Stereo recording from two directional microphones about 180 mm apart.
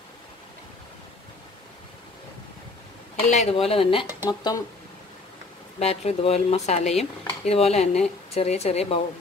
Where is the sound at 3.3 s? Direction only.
35° left (ahead or behind).